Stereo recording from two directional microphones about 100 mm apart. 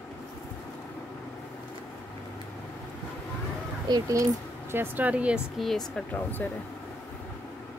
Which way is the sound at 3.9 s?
35° right (ahead or behind).